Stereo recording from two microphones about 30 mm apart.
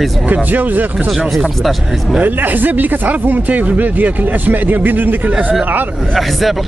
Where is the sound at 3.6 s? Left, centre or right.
Right.